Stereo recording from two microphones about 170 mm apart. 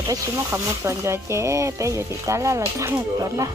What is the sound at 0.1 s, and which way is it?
Speech, 15° right (ahead or behind).